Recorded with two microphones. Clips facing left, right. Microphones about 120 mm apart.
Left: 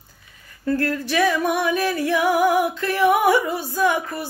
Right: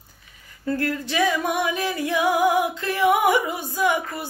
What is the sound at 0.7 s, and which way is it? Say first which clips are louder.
Female singing: left 3 dB; 20° right (ahead or behind).